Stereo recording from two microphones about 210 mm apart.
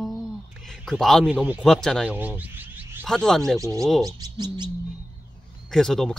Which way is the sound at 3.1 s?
Centre (ahead or behind).